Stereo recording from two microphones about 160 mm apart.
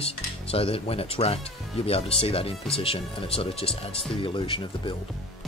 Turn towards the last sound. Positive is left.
turn(degrees=30)  # may be behind; listen again after turning